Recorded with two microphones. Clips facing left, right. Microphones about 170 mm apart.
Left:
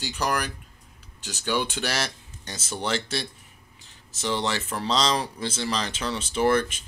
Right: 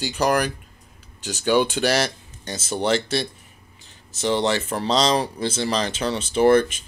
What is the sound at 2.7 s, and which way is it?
Speech, 65° right (ahead or behind).